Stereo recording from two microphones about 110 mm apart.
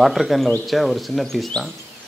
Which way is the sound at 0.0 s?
Centre (ahead or behind).